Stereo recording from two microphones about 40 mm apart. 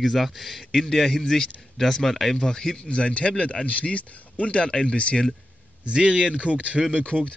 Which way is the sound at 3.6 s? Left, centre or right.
Left.